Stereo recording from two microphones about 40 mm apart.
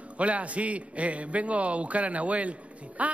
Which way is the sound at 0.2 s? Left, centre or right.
Right.